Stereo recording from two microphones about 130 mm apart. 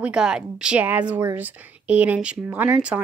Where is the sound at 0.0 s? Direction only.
5° right (ahead or behind).